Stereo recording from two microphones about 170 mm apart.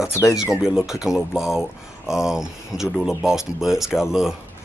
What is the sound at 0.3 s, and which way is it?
Speech, centre (ahead or behind).